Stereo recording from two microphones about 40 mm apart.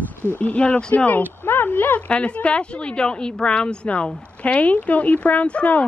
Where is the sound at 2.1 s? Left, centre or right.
Left.